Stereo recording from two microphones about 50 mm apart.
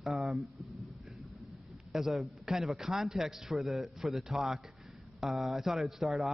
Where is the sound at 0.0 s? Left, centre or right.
Centre.